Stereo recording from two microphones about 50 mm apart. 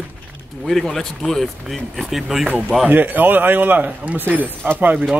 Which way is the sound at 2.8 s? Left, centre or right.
Right.